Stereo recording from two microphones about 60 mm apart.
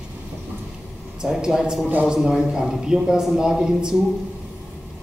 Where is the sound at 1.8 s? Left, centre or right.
Right.